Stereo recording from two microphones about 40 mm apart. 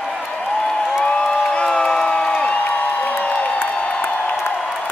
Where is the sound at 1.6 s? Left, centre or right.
Left.